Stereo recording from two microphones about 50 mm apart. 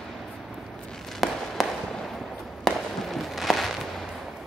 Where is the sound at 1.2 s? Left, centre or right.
Centre.